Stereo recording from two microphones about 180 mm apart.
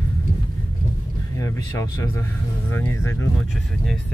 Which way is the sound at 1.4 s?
20° left (ahead or behind).